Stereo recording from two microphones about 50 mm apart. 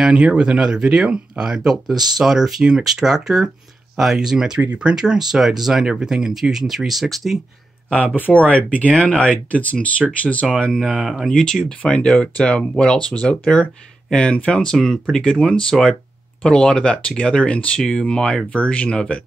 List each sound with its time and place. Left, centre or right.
0.0 s speech: centre
8.2 s speech: left
10.6 s speech: centre
10.9 s speech: centre
11.2 s speech: centre
11.8 s speech: left
16.4 s speech: centre